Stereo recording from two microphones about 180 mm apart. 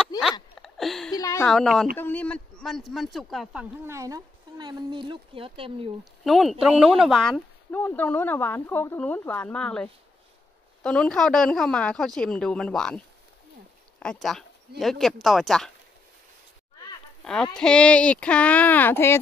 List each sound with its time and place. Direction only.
0.2 s a sound: centre (ahead or behind)
1.1 s a sound: 15° left (ahead or behind)
1.5 s speech: 5° left (ahead or behind)
3.8 s speech: 15° right (ahead or behind)
6.2 s speech: centre (ahead or behind)
17.2 s speech: 5° left (ahead or behind)